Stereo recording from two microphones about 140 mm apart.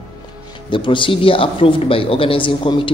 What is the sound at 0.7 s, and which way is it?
Speech, 35° left (ahead or behind).